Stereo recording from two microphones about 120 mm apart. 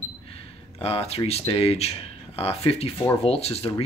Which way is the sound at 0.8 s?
55° left (ahead or behind).